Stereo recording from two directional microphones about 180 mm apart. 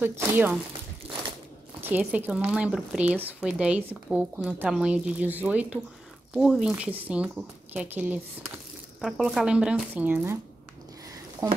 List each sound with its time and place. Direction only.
0.0 s a woman's voice: 10° right (ahead or behind)
1.0 s a sound: 30° right (ahead or behind)
1.8 s a woman's voice: 10° right (ahead or behind)
11.4 s speech: 20° right (ahead or behind)